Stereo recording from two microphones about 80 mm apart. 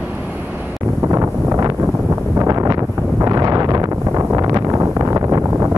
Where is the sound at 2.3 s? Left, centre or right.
Right.